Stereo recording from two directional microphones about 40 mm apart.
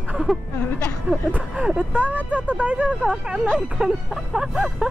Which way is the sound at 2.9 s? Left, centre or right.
Centre.